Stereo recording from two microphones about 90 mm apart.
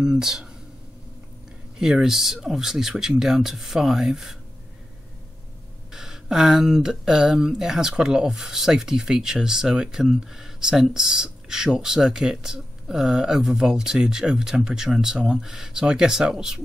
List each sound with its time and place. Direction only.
0.0 s speech: 5° right (ahead or behind)
1.8 s speech: 5° right (ahead or behind)
5.9 s speech: 5° right (ahead or behind)